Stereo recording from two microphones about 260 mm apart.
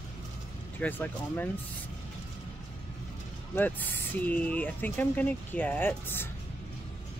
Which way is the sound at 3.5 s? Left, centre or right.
Centre.